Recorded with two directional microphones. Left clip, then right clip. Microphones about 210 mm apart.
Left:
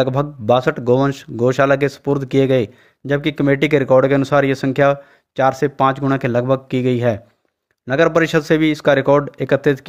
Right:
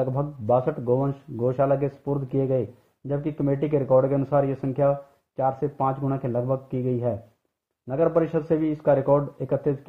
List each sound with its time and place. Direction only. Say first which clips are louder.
0.0 s speech: left 9 dB; 35° left (ahead or behind)